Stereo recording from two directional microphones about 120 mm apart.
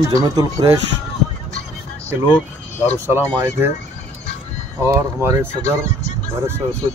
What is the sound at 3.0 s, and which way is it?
Speech, 20° right (ahead or behind).